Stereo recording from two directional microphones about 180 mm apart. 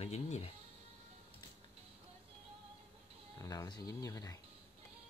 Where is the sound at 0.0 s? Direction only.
35° left (ahead or behind).